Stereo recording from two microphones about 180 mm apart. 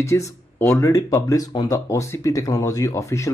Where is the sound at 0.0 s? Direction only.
15° left (ahead or behind).